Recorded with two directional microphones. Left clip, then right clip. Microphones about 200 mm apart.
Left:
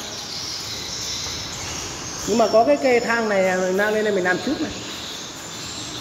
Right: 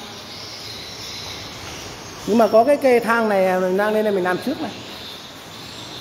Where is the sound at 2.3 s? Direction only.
40° right (ahead or behind).